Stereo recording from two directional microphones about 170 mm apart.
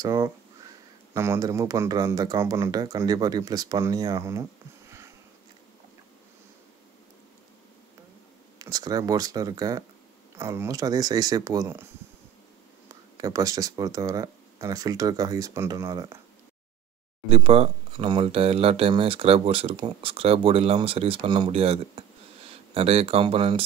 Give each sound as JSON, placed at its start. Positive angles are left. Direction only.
{"t": 0.0, "sound": "speech", "side_deg": -20}
{"t": 8.5, "sound": "speech", "side_deg": -20}
{"t": 17.3, "sound": "speech", "side_deg": -35}